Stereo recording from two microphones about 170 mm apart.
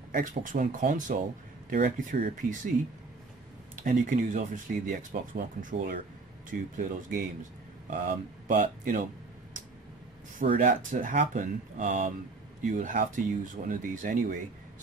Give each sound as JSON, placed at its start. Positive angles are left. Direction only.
{"t": 0.1, "sound": "speech", "side_deg": -50}
{"t": 3.7, "sound": "speech", "side_deg": -50}
{"t": 10.4, "sound": "speech", "side_deg": -50}